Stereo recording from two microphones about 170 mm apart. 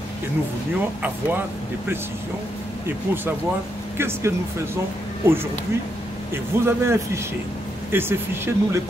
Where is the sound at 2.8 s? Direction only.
10° right (ahead or behind).